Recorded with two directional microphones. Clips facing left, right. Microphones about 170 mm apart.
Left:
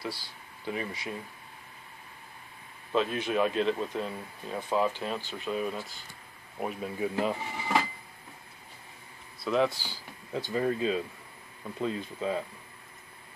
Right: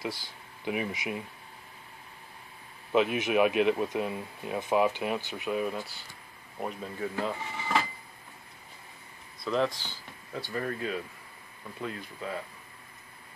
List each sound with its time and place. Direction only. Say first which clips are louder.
0.7 s speech: right 3 dB; 15° right (ahead or behind)
2.9 s speech: right 3 dB; 15° right (ahead or behind)
6.6 s speech: left 2 dB; 10° left (ahead or behind)
9.4 s speech: left 2 dB; 5° left (ahead or behind)
10.5 s speech: left 5 dB; 20° left (ahead or behind)